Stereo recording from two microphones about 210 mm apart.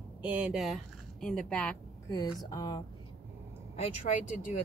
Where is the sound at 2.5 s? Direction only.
20° left (ahead or behind).